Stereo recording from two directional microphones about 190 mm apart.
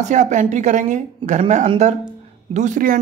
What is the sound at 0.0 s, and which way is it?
A man's voice, 40° right (ahead or behind).